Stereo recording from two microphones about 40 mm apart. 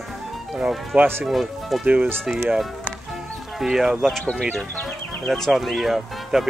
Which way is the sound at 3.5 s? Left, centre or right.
Centre.